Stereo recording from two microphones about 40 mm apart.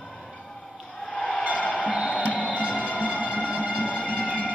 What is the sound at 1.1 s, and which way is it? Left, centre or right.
Music, left.